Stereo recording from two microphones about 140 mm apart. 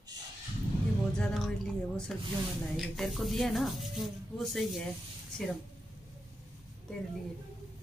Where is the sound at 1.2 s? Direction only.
5° left (ahead or behind).